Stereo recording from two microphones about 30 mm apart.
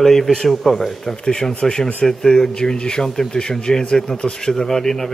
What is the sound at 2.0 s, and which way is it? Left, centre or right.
A man's voice, centre.